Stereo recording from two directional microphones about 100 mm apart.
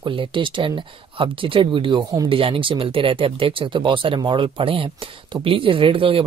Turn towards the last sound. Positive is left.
turn(degrees=-65)  # may be behind; listen again after turning